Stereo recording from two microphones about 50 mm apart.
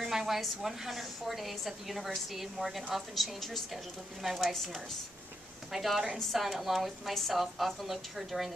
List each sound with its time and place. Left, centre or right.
0.0 s a woman's voice: centre
5.7 s a woman's voice: centre